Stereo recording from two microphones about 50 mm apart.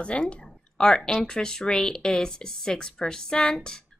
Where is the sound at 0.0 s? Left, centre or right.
Left.